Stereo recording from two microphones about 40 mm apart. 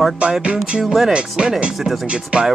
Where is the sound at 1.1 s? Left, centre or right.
Right.